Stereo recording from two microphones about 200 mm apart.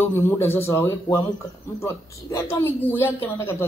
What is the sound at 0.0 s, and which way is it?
Speech, 10° left (ahead or behind).